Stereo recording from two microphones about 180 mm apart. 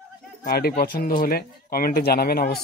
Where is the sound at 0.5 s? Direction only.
55° left (ahead or behind).